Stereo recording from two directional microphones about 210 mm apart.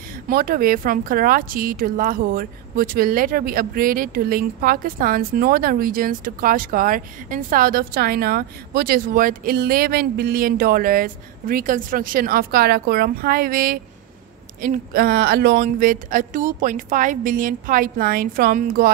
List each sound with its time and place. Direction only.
0.3 s a woman's voice: 45° right (ahead or behind)